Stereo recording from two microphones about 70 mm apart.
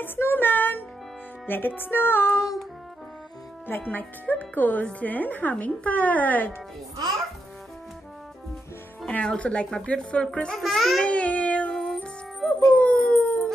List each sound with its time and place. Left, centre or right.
0.0 s music: left
3.9 s speech: left
9.0 s speech: centre
10.6 s speech: centre
11.1 s music: centre
12.5 s howl: left